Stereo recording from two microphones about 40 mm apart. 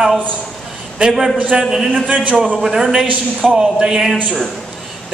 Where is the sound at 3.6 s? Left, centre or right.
Centre.